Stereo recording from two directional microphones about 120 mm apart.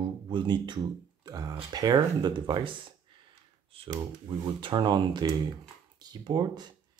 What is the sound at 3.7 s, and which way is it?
Speech, 45° right (ahead or behind).